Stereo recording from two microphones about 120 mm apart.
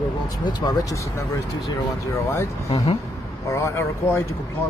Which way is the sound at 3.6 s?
20° left (ahead or behind).